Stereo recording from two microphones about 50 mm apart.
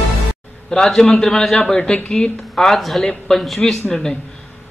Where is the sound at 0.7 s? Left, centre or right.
Centre.